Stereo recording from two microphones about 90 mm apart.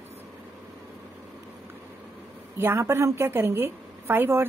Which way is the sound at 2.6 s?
30° right (ahead or behind).